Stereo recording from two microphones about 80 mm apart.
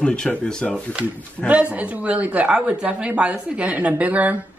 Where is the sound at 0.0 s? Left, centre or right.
Centre.